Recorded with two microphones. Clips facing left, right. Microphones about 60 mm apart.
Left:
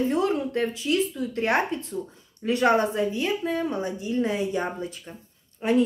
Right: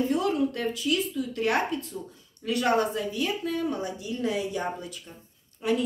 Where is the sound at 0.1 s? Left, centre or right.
Left.